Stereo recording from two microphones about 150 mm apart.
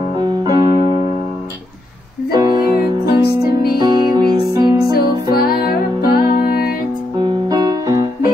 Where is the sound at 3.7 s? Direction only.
30° right (ahead or behind).